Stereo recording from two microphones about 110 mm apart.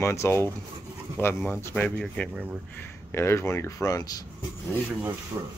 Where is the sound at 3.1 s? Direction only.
25° left (ahead or behind).